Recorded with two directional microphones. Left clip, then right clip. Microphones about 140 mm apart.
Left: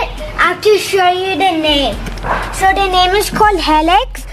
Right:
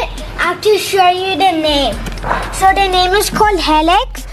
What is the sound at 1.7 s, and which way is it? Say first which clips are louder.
A woman's voice: even; 15° right (ahead or behind).